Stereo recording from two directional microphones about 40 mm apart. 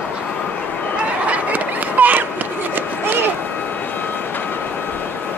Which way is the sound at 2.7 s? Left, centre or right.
Right.